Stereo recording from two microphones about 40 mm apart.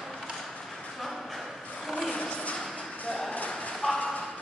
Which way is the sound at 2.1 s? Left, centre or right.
Left.